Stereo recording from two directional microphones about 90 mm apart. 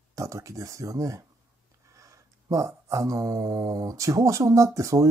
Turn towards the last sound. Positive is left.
turn(degrees=-35)  # may be behind; listen again after turning